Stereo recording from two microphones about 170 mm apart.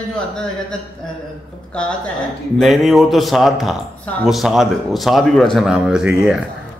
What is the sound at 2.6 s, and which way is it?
A man's voice, centre (ahead or behind).